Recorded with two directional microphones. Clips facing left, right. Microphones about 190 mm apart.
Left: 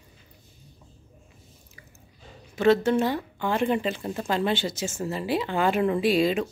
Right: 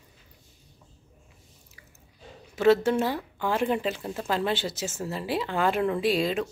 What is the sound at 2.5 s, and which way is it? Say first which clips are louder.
Speech: even; 5° right (ahead or behind).